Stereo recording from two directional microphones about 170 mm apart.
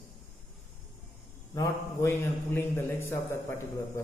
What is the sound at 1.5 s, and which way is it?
A man's voice, 15° left (ahead or behind).